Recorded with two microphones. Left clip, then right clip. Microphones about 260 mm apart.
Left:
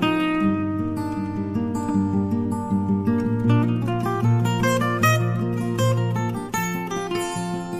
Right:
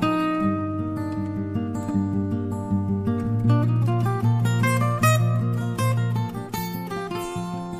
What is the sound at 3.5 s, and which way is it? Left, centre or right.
Music, right.